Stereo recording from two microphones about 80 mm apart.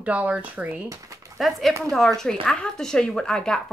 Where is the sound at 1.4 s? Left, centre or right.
Centre.